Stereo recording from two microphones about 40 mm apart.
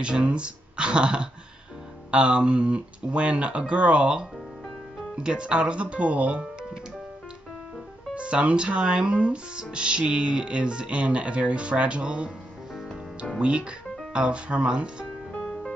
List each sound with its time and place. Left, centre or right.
0.0 s speech: right
8.1 s speech: right
13.4 s speech: right